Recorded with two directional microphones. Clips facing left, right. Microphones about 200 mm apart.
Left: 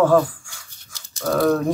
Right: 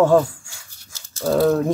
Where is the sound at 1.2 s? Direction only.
30° right (ahead or behind).